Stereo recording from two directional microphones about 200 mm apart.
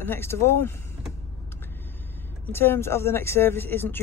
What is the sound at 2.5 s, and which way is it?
Speech, 10° left (ahead or behind).